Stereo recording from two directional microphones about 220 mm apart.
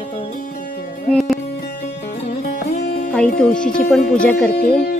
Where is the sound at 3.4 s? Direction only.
5° left (ahead or behind).